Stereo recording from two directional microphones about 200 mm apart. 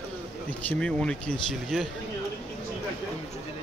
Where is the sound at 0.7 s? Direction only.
5° left (ahead or behind).